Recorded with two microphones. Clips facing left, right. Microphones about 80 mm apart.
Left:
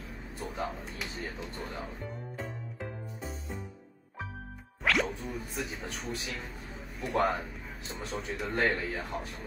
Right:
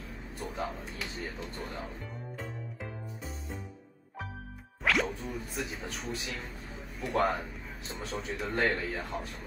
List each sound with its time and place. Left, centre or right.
0.7 s speech: centre
1.1 s a man's voice: centre
1.6 s speech: centre
2.3 s music: centre
4.8 s music: centre
5.5 s a man's voice: centre